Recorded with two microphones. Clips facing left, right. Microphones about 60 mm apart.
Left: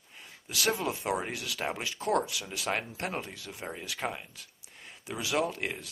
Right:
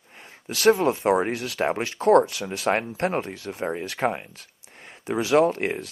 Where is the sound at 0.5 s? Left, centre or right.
Right.